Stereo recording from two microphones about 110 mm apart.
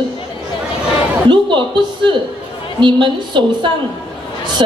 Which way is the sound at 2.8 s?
45° right (ahead or behind).